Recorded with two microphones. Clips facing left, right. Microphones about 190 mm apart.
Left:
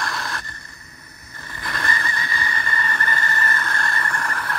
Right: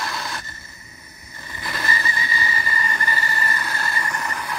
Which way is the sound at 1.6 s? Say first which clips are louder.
Even; 5° right (ahead or behind).